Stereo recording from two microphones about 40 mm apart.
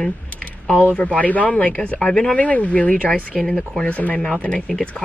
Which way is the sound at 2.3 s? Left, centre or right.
Left.